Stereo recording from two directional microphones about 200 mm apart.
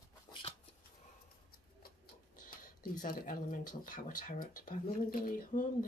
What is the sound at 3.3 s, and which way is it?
Speech, 45° left (ahead or behind).